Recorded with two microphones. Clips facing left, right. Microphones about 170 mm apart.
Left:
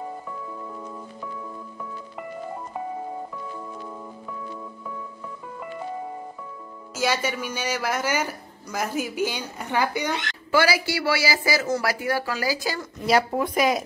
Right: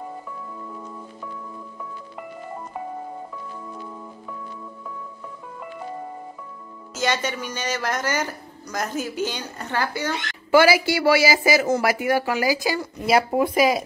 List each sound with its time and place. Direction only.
7.0 s speech: 5° left (ahead or behind)
10.5 s speech: 20° right (ahead or behind); by 13.8 s centre (ahead or behind)